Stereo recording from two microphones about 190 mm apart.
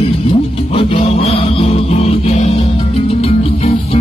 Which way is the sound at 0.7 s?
30° left (ahead or behind).